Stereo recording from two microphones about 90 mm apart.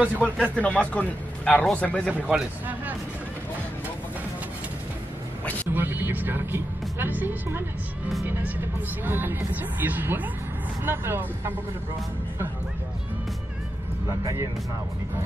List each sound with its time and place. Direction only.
0.2 s a man's voice: 15° left (ahead or behind)
2.1 s speech: 15° right (ahead or behind)
5.7 s speech: 20° right (ahead or behind)
14.0 s speech: 35° right (ahead or behind)